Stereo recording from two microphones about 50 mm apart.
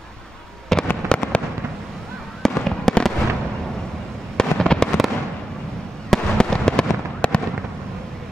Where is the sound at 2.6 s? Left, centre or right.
Centre.